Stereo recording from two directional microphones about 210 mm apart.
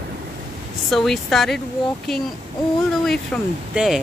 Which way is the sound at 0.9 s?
Centre (ahead or behind).